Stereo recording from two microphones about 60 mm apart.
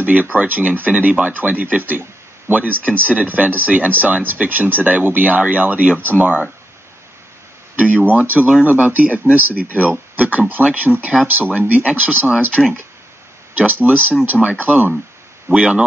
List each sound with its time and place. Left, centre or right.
0.0 s speech: right
7.7 s speech: right
13.8 s speech: right